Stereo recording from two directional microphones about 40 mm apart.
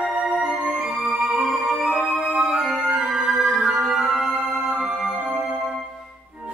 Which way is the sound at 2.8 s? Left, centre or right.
Right.